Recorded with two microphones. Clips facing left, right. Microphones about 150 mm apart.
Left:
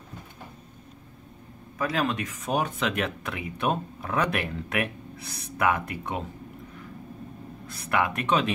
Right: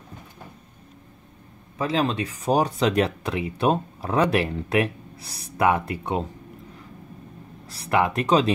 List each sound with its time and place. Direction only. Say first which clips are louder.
1.8 s speech: right 3 dB; 25° right (ahead or behind)
7.6 s speech: right 4 dB; 35° right (ahead or behind)